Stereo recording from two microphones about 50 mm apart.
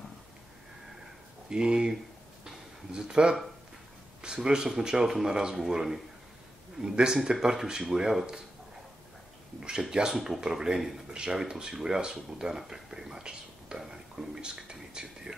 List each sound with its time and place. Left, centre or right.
1.5 s speech: centre
2.4 s a sound: centre
4.2 s speech: centre
9.6 s speech: centre